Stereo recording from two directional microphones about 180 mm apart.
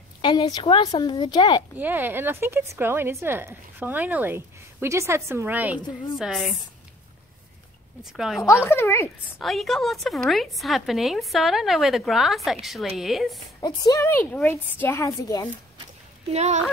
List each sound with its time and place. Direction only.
0.2 s a woman's voice: 25° left (ahead or behind)
1.8 s a woman's voice: 10° right (ahead or behind)
8.1 s a woman's voice: centre (ahead or behind)
8.6 s a woman's voice: 15° left (ahead or behind)
9.4 s a woman's voice: centre (ahead or behind)
13.6 s a woman's voice: 20° left (ahead or behind)
16.3 s speech: 40° right (ahead or behind)